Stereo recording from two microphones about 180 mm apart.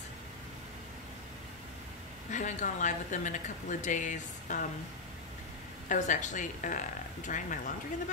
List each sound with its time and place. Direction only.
2.3 s a woman's voice: 45° left (ahead or behind)
5.9 s a woman's voice: 45° left (ahead or behind)